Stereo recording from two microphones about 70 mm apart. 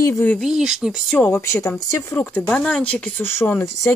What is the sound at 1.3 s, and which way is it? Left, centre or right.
Speech, left.